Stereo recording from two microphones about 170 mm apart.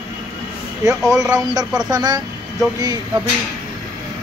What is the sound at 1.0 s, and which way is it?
Speech, 5° right (ahead or behind).